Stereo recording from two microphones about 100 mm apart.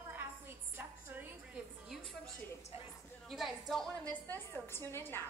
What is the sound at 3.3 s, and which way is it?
Speech, centre (ahead or behind).